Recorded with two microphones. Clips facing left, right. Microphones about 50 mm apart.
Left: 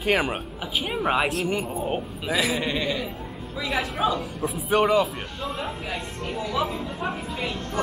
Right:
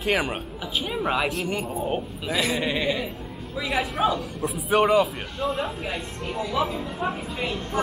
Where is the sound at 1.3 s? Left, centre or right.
Centre.